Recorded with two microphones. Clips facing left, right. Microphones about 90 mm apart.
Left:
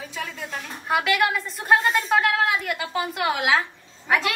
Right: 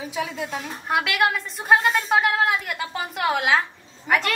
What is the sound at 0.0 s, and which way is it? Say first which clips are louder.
A woman's voice: right 5 dB; 10° right (ahead or behind).